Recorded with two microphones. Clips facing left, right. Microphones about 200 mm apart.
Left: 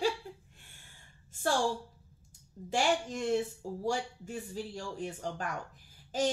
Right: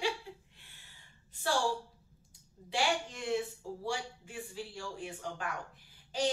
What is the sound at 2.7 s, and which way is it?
Speech, 45° left (ahead or behind).